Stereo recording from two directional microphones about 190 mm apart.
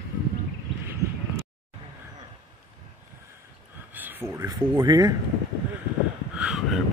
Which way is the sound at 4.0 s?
10° right (ahead or behind).